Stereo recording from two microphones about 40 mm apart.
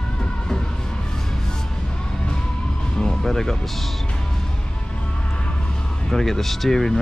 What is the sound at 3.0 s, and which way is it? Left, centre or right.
Music, centre.